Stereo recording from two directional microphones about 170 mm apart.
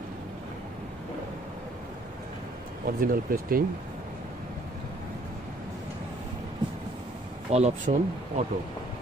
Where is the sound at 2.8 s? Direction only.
55° right (ahead or behind).